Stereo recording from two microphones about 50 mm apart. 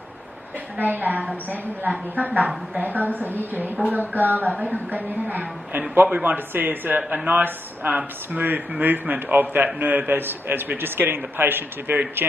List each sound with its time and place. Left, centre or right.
0.7 s a man's voice: right